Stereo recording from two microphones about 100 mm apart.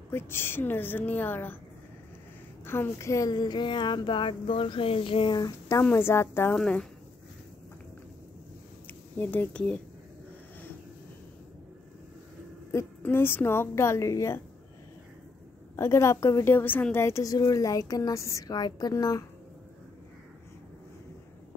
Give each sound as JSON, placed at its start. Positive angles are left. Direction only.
{"t": 0.1, "sound": "a woman's voice", "side_deg": 25}
{"t": 2.6, "sound": "speech", "side_deg": 25}
{"t": 5.4, "sound": "a woman's voice", "side_deg": 30}
{"t": 6.5, "sound": "speech", "side_deg": 5}
{"t": 8.8, "sound": "speech", "side_deg": 20}
{"t": 13.0, "sound": "a woman's voice", "side_deg": 20}
{"t": 15.7, "sound": "a woman's voice", "side_deg": 30}